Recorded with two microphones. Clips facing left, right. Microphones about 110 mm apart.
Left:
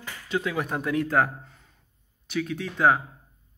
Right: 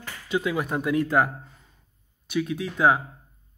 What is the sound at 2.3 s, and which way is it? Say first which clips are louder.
Speech: right 2 dB; 5° right (ahead or behind).